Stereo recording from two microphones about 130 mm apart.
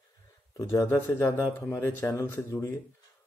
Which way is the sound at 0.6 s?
20° left (ahead or behind).